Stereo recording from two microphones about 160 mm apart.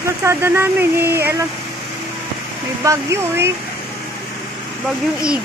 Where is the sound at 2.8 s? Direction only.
20° right (ahead or behind).